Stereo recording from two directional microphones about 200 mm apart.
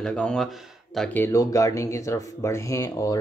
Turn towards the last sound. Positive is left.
turn(degrees=15)  # may be behind; listen again after turning